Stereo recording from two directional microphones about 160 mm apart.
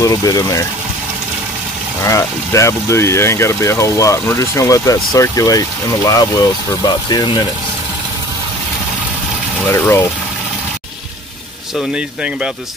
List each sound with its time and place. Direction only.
0.0 s speech: 20° left (ahead or behind)
2.0 s speech: 20° left (ahead or behind)
9.7 s speech: 15° left (ahead or behind)